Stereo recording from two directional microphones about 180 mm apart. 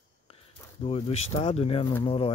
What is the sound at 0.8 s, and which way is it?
Speech, 35° left (ahead or behind).